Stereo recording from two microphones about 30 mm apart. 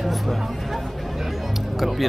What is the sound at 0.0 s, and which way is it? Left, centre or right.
Chatter, centre.